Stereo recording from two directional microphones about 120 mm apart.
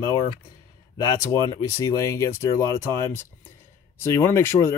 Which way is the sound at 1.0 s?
30° left (ahead or behind).